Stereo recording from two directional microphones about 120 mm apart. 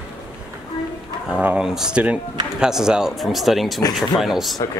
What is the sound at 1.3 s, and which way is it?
Speech, 10° right (ahead or behind).